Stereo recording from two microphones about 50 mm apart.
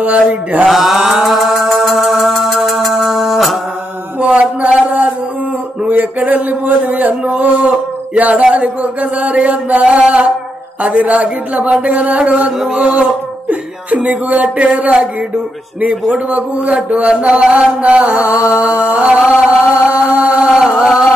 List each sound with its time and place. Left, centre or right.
0.0 s mantra: right
0.7 s music: centre
4.2 s a sound: right
18.6 s music: right